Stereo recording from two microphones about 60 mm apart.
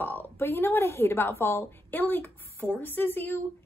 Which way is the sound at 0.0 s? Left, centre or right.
Left.